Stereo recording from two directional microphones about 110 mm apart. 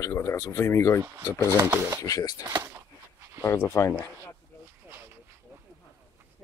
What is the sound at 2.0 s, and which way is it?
Speech, 30° left (ahead or behind).